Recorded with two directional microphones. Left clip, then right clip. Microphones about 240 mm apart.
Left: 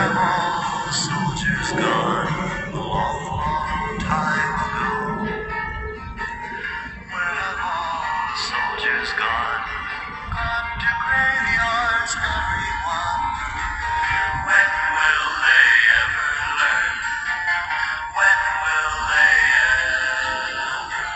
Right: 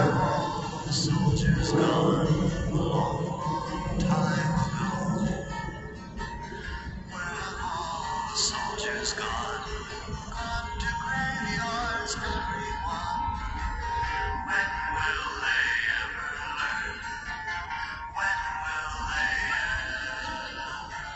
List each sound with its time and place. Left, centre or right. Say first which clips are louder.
0.0 s music: left 7 dB; centre
8.1 s music: left 6 dB; left